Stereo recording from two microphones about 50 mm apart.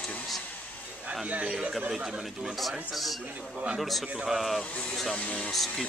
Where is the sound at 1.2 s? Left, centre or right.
Right.